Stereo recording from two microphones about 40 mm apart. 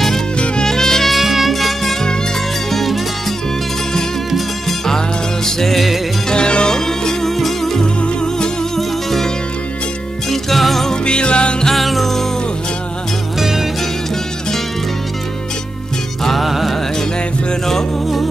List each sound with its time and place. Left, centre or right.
0.7 s music: centre
1.1 s music: centre
4.6 s music: centre
6.2 s music: left; by 7.8 s centre
7.8 s music: centre
8.7 s music: centre
10.3 s music: centre
10.9 s music: left
11.7 s music: centre
13.4 s music: centre
16.3 s music: centre